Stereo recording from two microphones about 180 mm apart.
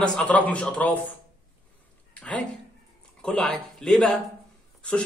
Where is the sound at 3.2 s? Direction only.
5° left (ahead or behind).